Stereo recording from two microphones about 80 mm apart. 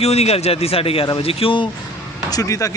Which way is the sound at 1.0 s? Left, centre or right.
Left.